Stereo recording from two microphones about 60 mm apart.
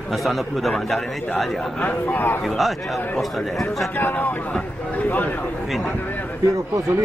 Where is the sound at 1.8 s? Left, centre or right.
Left.